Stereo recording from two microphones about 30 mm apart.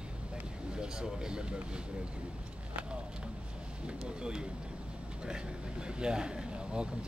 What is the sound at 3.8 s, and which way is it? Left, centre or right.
Speech, right.